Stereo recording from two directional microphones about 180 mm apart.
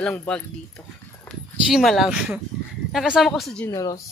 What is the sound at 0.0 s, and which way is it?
Speech, 10° left (ahead or behind).